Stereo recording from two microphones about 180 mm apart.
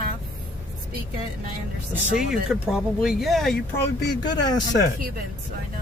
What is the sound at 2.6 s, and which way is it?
Speech, 5° right (ahead or behind).